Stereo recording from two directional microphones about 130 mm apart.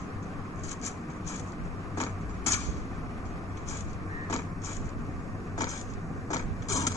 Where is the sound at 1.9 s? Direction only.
20° left (ahead or behind).